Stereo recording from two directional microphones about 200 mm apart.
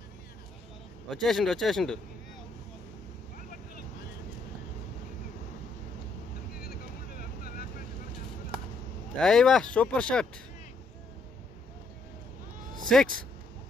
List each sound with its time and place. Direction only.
1.1 s speech: centre (ahead or behind)
6.6 s boat: 50° left (ahead or behind)
9.2 s speech: 5° left (ahead or behind)
12.8 s speech: 5° left (ahead or behind)